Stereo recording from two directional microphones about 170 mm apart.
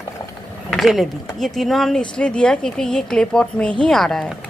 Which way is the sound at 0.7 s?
Centre (ahead or behind).